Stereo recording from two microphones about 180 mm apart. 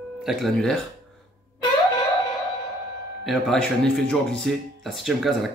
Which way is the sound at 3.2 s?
Centre (ahead or behind).